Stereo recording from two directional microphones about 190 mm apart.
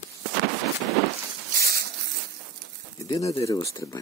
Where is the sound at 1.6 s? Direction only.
55° right (ahead or behind).